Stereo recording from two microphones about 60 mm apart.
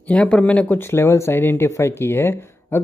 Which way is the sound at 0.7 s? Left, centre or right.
Left.